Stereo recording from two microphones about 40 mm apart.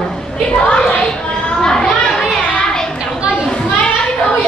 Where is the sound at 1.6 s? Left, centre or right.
Centre.